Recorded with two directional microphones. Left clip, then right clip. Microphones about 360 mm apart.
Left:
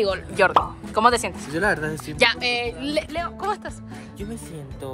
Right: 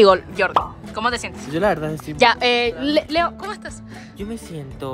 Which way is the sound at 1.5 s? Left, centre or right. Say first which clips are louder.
Right 3 dB; right.